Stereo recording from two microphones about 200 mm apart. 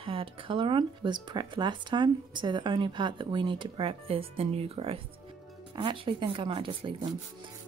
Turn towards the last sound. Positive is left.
turn(degrees=-25)  # may be behind; listen again after turning